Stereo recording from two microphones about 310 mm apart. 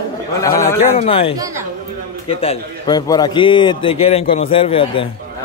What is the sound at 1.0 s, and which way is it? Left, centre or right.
A man's voice, centre.